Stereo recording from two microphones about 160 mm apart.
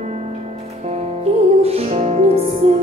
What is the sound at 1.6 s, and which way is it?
Music, 40° right (ahead or behind).